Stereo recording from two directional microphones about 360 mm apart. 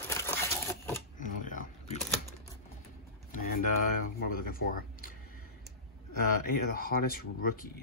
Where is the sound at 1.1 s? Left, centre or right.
Left.